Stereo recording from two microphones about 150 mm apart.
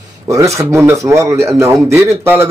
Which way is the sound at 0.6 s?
20° right (ahead or behind).